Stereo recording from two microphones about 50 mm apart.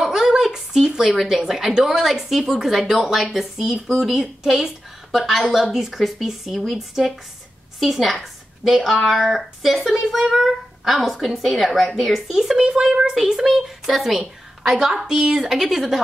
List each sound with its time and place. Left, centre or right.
0.0 s a sound: centre
1.7 s a woman's voice: centre
12.8 s a woman's voice: centre
13.1 s a woman's voice: centre